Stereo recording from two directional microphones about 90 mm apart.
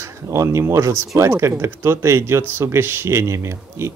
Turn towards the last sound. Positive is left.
turn(degrees=-30)  # may be behind; listen again after turning